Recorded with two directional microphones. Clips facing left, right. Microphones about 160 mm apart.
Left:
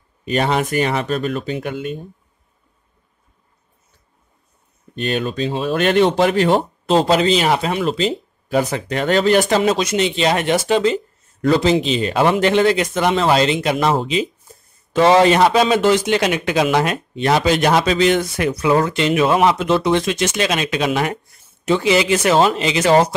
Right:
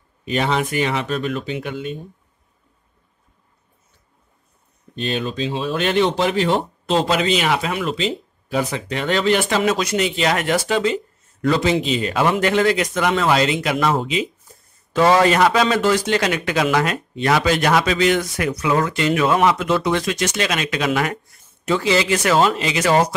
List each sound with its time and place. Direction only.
0.2 s speech: 50° left (ahead or behind)
4.9 s speech: 55° left (ahead or behind)
9.6 s a man's voice: 25° left (ahead or behind)
14.9 s a man's voice: 20° left (ahead or behind)